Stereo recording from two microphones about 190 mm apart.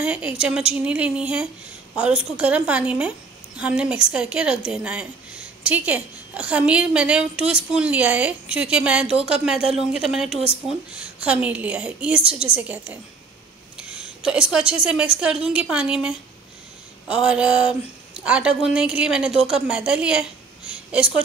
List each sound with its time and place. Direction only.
0.0 s a woman's voice: 5° right (ahead or behind)